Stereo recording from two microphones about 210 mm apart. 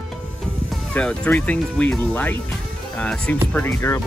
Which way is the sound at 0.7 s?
5° left (ahead or behind).